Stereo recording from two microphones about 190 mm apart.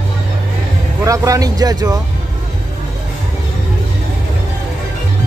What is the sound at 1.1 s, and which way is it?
Speech, 15° right (ahead or behind).